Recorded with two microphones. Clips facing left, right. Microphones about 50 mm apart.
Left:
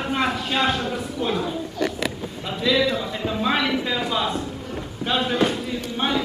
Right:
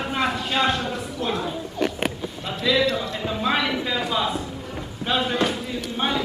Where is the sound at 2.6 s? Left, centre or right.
Centre.